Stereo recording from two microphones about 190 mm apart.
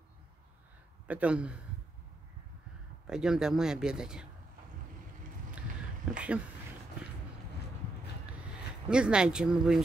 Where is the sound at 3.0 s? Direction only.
5° right (ahead or behind).